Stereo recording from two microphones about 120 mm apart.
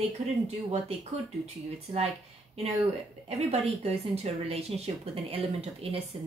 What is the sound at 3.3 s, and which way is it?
Speech, 60° right (ahead or behind).